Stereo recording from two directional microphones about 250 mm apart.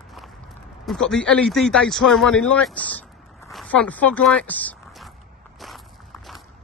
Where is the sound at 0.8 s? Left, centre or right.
Centre.